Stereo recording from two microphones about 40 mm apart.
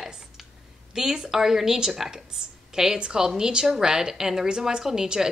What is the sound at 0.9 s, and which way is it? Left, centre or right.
A woman's voice, centre.